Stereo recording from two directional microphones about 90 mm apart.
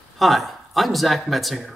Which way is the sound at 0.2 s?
Centre (ahead or behind).